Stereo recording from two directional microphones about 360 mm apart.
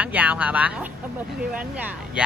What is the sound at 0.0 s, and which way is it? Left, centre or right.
Speech, centre.